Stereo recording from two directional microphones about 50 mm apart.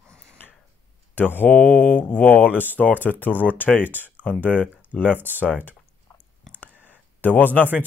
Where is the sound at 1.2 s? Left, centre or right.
Left.